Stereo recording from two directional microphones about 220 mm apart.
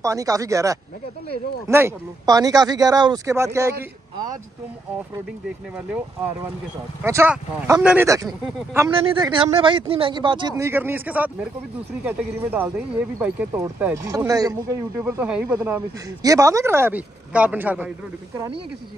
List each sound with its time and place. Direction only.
0.0 s speech: 15° right (ahead or behind)
7.0 s speech: 10° right (ahead or behind)
8.3 s speech: centre (ahead or behind)
8.7 s speech: 15° right (ahead or behind)
10.6 s speech: 10° right (ahead or behind)